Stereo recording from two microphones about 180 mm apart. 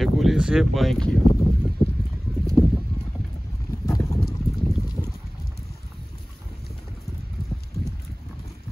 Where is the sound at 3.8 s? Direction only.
20° left (ahead or behind).